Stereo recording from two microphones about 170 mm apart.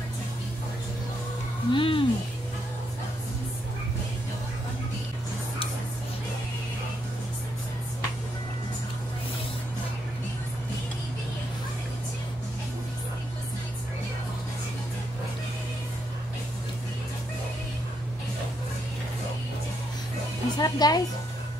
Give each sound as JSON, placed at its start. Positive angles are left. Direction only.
{"t": 1.7, "sound": "speech", "side_deg": 30}
{"t": 20.5, "sound": "speech", "side_deg": 25}